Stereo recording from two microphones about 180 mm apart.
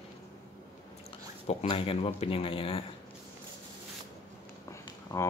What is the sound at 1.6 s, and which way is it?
Speech, 30° left (ahead or behind).